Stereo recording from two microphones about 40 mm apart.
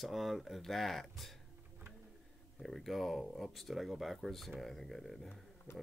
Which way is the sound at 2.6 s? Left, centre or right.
Centre.